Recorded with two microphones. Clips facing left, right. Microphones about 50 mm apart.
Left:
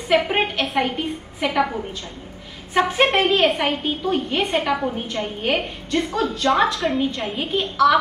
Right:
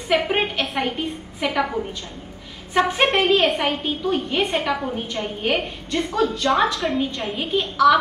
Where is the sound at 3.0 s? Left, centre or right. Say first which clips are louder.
Left 3 dB; left.